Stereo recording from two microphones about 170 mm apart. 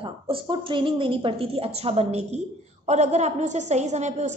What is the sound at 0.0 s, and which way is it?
A woman's voice, 30° right (ahead or behind).